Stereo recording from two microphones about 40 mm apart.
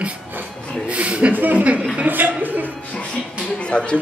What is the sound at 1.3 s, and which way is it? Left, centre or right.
A woman's voice, right.